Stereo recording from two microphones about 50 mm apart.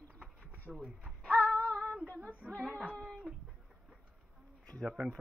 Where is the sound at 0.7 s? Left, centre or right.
Centre.